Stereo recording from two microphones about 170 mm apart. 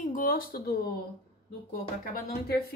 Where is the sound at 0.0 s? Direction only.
55° left (ahead or behind).